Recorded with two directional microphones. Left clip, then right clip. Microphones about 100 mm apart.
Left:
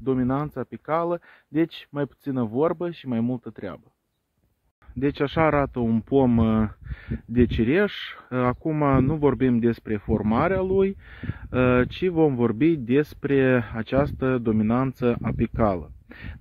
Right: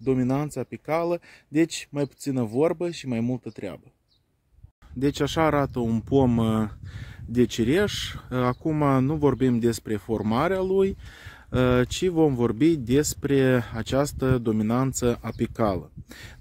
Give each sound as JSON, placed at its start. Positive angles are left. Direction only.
{"t": 0.0, "sound": "speech", "side_deg": -20}
{"t": 4.9, "sound": "speech", "side_deg": -30}